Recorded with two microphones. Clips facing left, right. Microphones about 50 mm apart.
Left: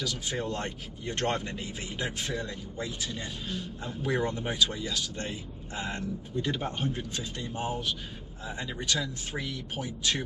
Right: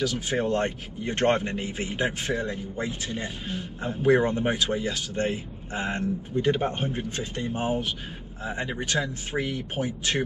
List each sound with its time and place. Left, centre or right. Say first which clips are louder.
0.0 s speech: right 7 dB; right